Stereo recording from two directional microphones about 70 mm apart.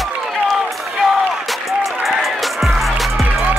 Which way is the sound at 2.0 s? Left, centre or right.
Centre.